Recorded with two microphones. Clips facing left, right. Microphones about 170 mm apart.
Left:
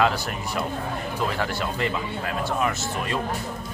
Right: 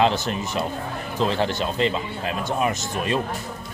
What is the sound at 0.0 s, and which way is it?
Speech, 20° right (ahead or behind).